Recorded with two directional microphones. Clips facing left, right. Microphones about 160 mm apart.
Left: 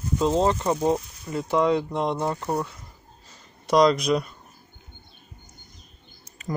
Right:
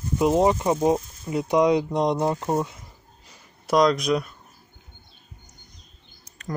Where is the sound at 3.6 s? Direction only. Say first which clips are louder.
Left 1 dB; centre (ahead or behind).